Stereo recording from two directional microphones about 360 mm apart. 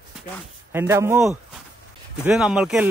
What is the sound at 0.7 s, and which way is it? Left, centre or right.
A man's voice, centre.